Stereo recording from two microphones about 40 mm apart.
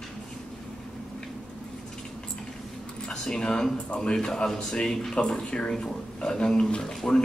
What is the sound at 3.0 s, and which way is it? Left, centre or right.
Speech, centre.